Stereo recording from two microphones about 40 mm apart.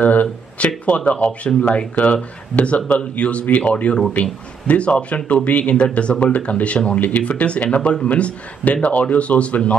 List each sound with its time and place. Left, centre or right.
0.0 s speech: left